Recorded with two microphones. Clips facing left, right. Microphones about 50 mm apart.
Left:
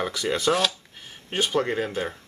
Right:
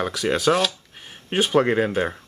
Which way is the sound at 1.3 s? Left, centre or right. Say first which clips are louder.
Right 5 dB; centre.